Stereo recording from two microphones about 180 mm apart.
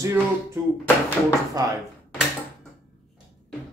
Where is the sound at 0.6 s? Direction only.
15° right (ahead or behind).